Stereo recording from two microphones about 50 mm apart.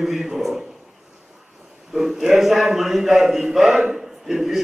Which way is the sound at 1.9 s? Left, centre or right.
Centre.